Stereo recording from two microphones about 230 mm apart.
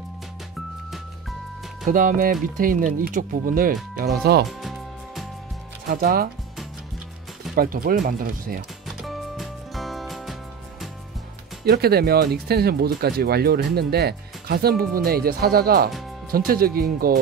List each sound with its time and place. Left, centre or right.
1.9 s speech: right
4.5 s music: centre
5.9 s speech: right
7.5 s speech: right
8.8 s music: centre
11.6 s speech: right